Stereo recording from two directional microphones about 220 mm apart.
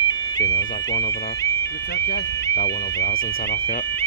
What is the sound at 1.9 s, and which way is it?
Speech, 50° left (ahead or behind).